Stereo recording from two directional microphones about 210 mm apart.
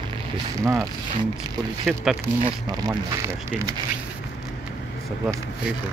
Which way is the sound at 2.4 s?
20° right (ahead or behind).